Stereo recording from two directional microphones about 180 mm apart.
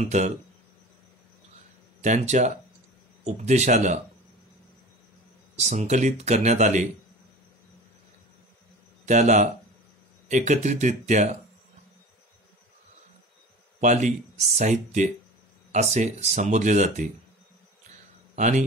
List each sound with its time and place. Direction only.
0.0 s speech: 40° right (ahead or behind)
2.0 s speech: 40° right (ahead or behind)
5.6 s speech: 40° right (ahead or behind)
9.0 s speech: 40° right (ahead or behind)
13.7 s speech: 40° right (ahead or behind)
18.3 s a man's voice: 40° right (ahead or behind)